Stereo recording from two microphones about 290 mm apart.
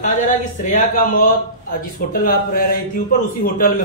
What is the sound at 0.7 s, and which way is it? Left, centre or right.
A man's voice, left.